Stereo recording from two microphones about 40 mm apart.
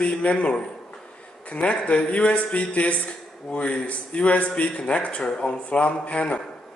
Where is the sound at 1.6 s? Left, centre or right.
Left.